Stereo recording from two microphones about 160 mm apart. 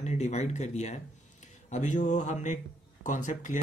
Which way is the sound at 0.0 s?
45° left (ahead or behind).